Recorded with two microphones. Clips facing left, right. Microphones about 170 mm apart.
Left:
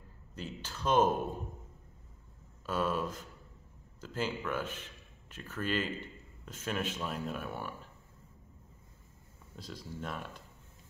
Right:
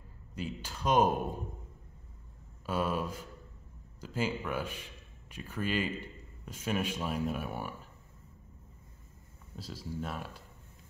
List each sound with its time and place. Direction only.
0.4 s speech: 10° right (ahead or behind)
2.6 s speech: 10° right (ahead or behind)
9.6 s speech: 5° right (ahead or behind)